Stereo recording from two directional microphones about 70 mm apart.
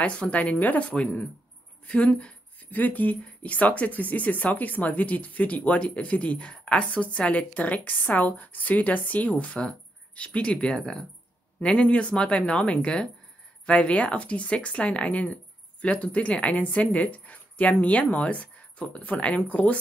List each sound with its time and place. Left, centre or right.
0.0 s speech: centre